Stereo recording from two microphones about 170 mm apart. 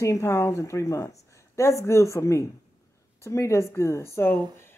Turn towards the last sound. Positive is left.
turn(degrees=15)  # may be behind; listen again after turning